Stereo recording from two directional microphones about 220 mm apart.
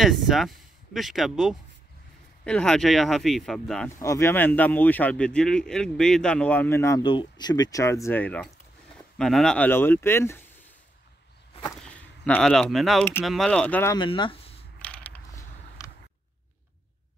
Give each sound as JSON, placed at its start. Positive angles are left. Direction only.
{"t": 0.0, "sound": "speech", "side_deg": 0}
{"t": 4.0, "sound": "speech", "side_deg": 15}
{"t": 11.8, "sound": "speech", "side_deg": 5}
{"t": 13.9, "sound": "speech", "side_deg": 20}
{"t": 14.8, "sound": "mechanisms", "side_deg": 5}